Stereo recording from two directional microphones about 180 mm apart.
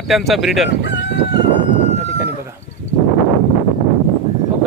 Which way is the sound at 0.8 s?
80° left.